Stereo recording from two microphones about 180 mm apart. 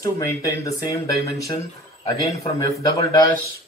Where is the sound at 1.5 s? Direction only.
35° left (ahead or behind).